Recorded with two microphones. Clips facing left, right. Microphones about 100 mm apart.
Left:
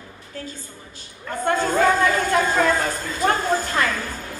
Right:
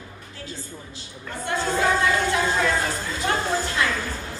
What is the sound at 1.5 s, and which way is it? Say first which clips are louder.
Speech: left 4 dB; 45° left (ahead or behind).